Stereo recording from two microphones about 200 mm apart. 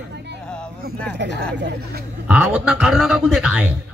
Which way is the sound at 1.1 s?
60° right (ahead or behind).